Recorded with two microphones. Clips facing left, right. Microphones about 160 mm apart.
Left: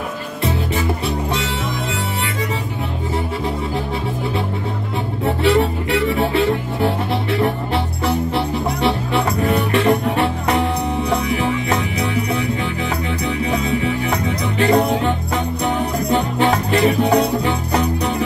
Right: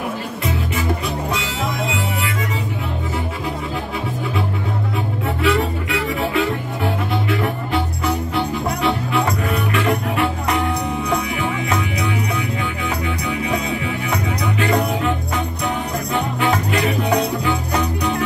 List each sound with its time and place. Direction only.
5.2 s music: 30° left (ahead or behind)
13.3 s music: 35° left (ahead or behind)